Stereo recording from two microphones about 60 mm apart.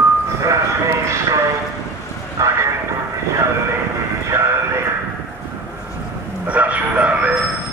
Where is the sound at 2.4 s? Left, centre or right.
Right.